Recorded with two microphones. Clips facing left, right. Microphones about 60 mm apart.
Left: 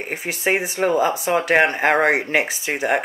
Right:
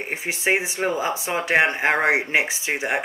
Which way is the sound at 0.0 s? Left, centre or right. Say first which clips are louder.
Left 1 dB; right.